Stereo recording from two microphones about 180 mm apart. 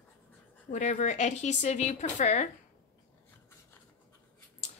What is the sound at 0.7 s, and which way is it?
Speech, 45° left (ahead or behind).